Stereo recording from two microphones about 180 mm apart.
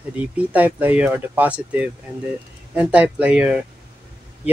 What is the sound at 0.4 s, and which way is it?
Speech, 10° right (ahead or behind).